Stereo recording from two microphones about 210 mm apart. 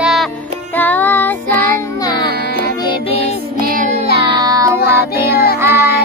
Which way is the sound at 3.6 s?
40° right (ahead or behind).